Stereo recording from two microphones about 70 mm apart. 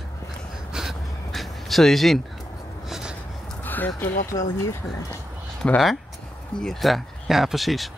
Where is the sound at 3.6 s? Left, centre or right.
Left.